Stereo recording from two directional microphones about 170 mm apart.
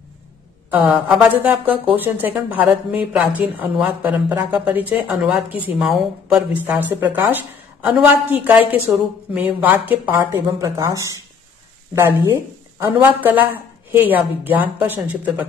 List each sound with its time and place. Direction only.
0.7 s a woman's voice: 10° right (ahead or behind)